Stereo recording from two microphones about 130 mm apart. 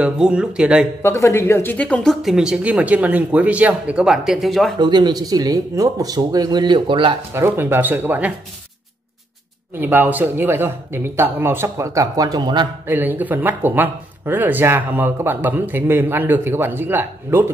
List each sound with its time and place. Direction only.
0.0 s speech: 5° right (ahead or behind)
1.0 s speech: 20° left (ahead or behind)
2.2 s speech: 5° right (ahead or behind)
4.7 s speech: 35° right (ahead or behind)
7.3 s speech: 20° right (ahead or behind)
9.8 s speech: 15° right (ahead or behind); by 12.6 s 30° right (ahead or behind)
12.8 s speech: 15° right (ahead or behind)